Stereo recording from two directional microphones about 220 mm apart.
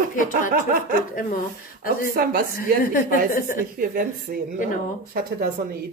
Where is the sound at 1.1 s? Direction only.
40° left (ahead or behind).